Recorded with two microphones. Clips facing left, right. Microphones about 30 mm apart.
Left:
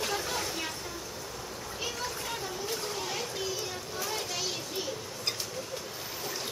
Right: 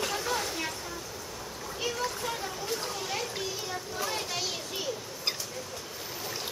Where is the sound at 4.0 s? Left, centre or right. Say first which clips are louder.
Right 1 dB; centre.